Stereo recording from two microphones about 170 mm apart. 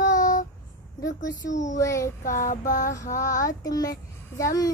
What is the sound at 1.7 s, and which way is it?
Child singing, 20° left (ahead or behind).